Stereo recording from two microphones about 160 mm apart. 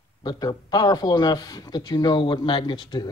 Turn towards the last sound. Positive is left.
turn(degrees=30)  # may be behind; listen again after turning